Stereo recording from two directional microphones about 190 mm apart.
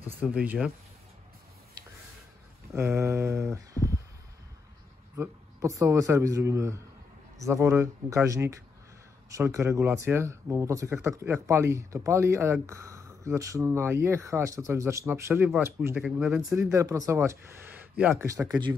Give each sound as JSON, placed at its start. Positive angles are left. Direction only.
{"t": 0.2, "sound": "speech", "side_deg": -10}
{"t": 2.7, "sound": "speech", "side_deg": -15}
{"t": 5.1, "sound": "speech", "side_deg": -10}
{"t": 16.0, "sound": "speech", "side_deg": 0}
{"t": 16.4, "sound": "speech", "side_deg": -15}